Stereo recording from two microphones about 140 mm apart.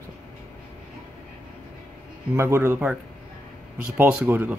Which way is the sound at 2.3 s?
20° right (ahead or behind).